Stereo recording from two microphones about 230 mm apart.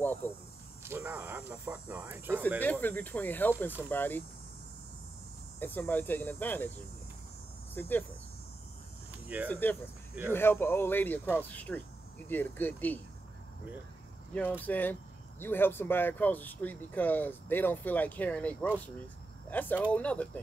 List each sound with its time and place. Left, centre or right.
0.2 s speech: centre
0.8 s speech: centre
2.6 s speech: centre
5.6 s speech: centre
7.7 s speech: centre
9.1 s a sound: centre
9.5 s speech: centre
14.6 s speech: centre